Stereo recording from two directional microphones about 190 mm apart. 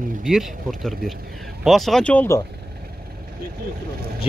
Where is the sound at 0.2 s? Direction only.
Centre (ahead or behind).